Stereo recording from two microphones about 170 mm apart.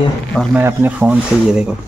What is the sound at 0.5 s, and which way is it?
Speech, 10° right (ahead or behind).